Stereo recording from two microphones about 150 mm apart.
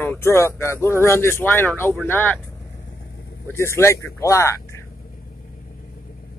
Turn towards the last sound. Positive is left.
turn(degrees=20)  # may be behind; listen again after turning